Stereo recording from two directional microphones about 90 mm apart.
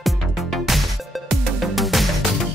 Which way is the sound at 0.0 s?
Centre (ahead or behind).